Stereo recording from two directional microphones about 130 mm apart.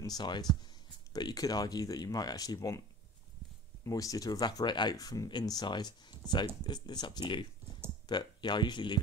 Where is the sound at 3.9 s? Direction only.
25° left (ahead or behind).